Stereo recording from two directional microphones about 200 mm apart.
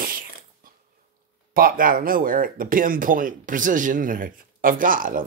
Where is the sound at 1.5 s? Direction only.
45° right (ahead or behind).